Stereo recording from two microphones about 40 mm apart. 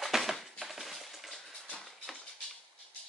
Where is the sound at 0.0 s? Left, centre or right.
Centre.